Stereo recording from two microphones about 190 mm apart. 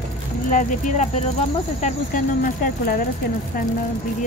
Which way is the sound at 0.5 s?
45° left (ahead or behind).